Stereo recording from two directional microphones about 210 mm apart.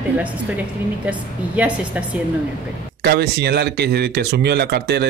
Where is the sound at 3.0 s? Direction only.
50° right (ahead or behind).